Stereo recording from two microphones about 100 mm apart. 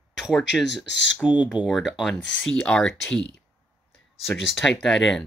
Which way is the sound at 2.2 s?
10° left (ahead or behind).